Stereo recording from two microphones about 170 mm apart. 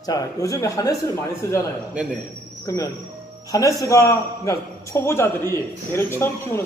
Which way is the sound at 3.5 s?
20° left (ahead or behind).